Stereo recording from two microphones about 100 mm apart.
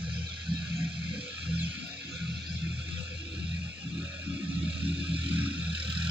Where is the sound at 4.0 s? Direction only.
15° right (ahead or behind).